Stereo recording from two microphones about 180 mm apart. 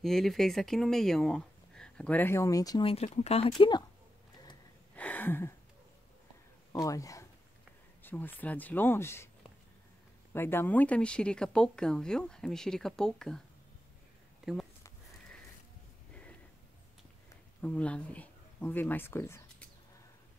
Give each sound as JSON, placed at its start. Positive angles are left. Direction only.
{"t": 0.0, "sound": "speech", "side_deg": 0}
{"t": 3.5, "sound": "speech", "side_deg": 25}
{"t": 4.9, "sound": "a sound", "side_deg": 10}
{"t": 6.7, "sound": "speech", "side_deg": 20}
{"t": 10.3, "sound": "speech", "side_deg": 15}
{"t": 14.4, "sound": "speech", "side_deg": 0}
{"t": 17.6, "sound": "speech", "side_deg": 5}